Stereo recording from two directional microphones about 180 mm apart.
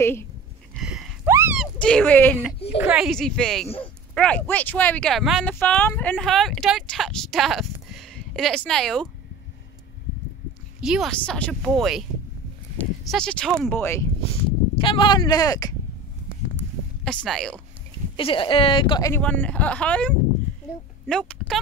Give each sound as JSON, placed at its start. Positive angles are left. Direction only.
{"t": 0.0, "sound": "speech", "side_deg": 15}
{"t": 0.7, "sound": "a sound", "side_deg": -5}
{"t": 1.6, "sound": "speech", "side_deg": 5}
{"t": 2.8, "sound": "speech", "side_deg": -5}
{"t": 10.8, "sound": "speech", "side_deg": 0}
{"t": 14.8, "sound": "speech", "side_deg": 30}
{"t": 17.0, "sound": "speech", "side_deg": 5}
{"t": 18.1, "sound": "speech", "side_deg": 30}
{"t": 19.2, "sound": "speech", "side_deg": 10}